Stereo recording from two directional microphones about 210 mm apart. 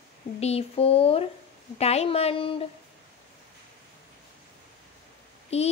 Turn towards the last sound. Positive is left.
turn(degrees=30)  # may be behind; listen again after turning